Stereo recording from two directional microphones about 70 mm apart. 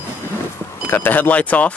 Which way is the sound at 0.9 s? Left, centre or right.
Left.